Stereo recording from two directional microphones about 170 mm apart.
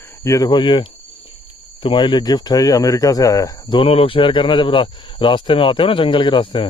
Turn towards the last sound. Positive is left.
turn(degrees=30)  # may be behind; listen again after turning